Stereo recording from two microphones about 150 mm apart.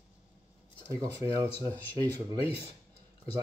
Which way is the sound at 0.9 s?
20° right (ahead or behind).